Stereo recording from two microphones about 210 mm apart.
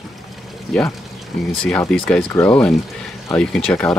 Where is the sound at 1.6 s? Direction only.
5° left (ahead or behind).